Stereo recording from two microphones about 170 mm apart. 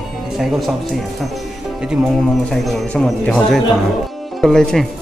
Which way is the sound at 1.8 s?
5° right (ahead or behind).